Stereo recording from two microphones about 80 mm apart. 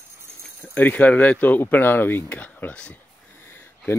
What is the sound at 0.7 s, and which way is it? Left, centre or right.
Speech, left.